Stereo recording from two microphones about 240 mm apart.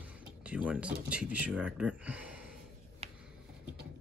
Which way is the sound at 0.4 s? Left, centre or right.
Centre.